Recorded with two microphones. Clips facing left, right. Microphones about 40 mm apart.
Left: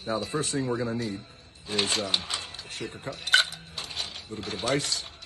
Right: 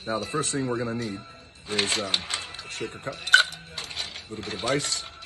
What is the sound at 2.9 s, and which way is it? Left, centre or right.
Speech, right.